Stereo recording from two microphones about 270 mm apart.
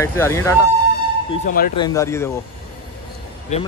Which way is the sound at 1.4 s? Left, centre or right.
Left.